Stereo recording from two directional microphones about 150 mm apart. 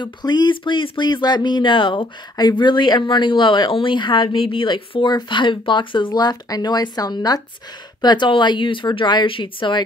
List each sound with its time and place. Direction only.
0.0 s speech: 30° left (ahead or behind)